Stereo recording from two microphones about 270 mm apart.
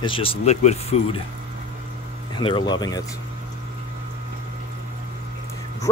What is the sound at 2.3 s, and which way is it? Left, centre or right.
Speech, centre.